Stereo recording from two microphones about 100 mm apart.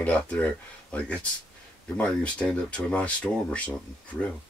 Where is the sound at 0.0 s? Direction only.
15° left (ahead or behind).